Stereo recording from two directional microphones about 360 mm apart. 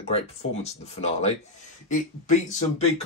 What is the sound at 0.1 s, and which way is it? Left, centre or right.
Speech, centre.